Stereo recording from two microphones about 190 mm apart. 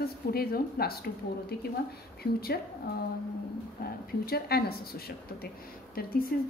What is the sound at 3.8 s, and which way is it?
Speech, 55° left (ahead or behind).